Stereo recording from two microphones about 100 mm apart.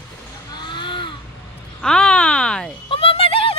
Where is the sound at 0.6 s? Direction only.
50° left (ahead or behind).